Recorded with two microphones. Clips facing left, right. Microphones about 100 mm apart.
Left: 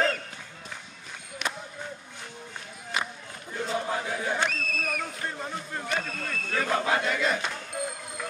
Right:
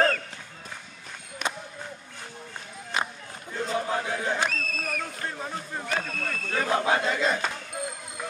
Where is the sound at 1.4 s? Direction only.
45° right (ahead or behind).